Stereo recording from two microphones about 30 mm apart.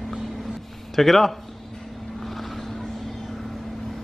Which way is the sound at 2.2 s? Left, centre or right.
Centre.